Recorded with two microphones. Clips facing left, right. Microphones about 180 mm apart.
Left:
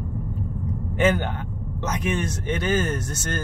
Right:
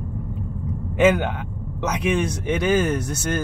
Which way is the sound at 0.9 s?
10° right (ahead or behind).